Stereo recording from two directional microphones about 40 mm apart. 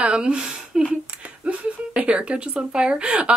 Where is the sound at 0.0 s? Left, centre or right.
Right.